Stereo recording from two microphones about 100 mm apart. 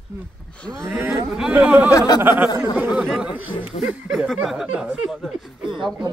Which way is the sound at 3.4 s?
60° left (ahead or behind).